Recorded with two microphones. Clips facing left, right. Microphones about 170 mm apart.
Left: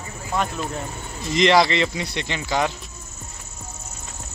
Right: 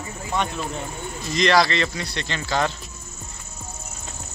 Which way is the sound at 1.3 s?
20° left (ahead or behind).